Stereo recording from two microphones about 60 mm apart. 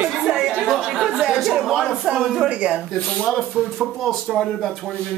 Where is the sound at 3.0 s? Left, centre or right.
Centre.